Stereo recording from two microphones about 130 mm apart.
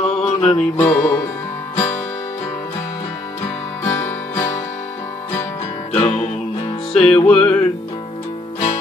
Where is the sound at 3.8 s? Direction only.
20° left (ahead or behind).